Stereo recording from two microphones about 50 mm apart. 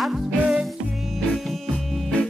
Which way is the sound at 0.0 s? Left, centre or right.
Centre.